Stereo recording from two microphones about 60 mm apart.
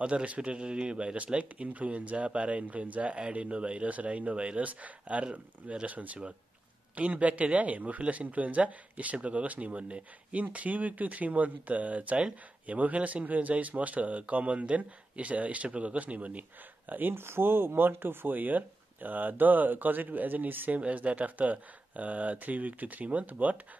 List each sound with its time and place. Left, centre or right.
0.0 s speech: right
16.9 s speech: right
20.8 s speech: right